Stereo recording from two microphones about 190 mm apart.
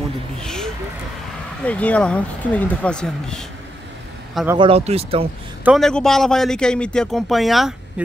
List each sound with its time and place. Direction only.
0.4 s a sound: 5° left (ahead or behind)
1.7 s speech: 5° left (ahead or behind)
4.6 s speech: 30° right (ahead or behind)
5.6 s a man's voice: centre (ahead or behind)